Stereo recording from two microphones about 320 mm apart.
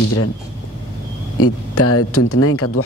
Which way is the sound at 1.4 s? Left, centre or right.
Left.